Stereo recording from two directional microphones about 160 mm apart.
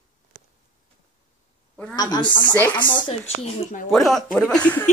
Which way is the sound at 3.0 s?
40° left (ahead or behind).